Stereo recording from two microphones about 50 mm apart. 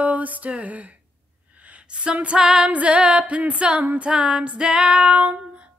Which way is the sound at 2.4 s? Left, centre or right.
Centre.